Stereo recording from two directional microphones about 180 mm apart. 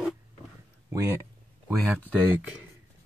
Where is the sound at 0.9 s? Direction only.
15° right (ahead or behind).